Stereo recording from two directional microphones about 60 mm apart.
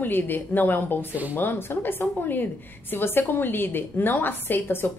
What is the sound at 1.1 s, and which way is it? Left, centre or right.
Speech, right.